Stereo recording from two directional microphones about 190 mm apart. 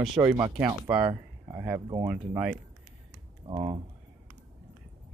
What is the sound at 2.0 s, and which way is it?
Speech, 5° right (ahead or behind).